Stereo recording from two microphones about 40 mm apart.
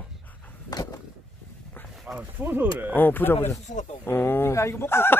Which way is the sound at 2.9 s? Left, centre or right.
Left.